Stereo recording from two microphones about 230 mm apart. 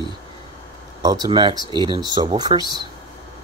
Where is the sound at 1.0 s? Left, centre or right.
Centre.